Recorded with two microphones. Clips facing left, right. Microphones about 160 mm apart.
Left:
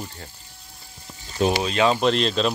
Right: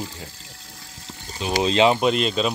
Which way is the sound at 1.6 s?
20° right (ahead or behind).